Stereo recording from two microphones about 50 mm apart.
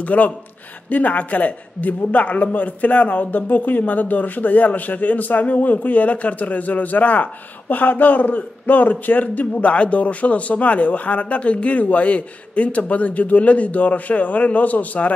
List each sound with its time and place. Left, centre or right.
0.0 s a man's voice: left